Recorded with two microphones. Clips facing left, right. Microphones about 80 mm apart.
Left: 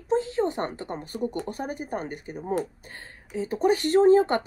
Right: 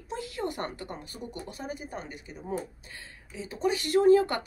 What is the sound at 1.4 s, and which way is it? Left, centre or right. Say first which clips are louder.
Speech: left 6 dB; left.